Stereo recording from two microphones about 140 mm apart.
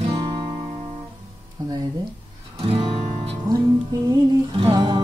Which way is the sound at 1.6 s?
30° right (ahead or behind).